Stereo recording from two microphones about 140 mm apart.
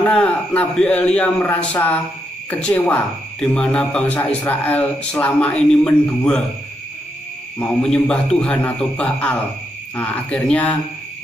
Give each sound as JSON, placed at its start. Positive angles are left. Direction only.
{"t": 0.0, "sound": "a man's voice", "side_deg": 10}
{"t": 7.5, "sound": "a man's voice", "side_deg": 5}